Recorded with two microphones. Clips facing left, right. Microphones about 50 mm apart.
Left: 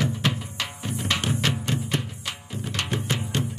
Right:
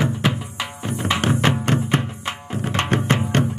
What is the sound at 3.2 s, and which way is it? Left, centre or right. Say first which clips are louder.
Music: right 8 dB; right.